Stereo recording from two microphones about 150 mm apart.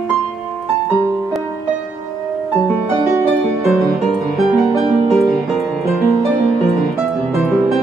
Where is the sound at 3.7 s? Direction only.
Centre (ahead or behind).